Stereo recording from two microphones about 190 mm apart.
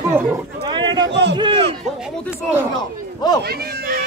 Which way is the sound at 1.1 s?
65° right (ahead or behind).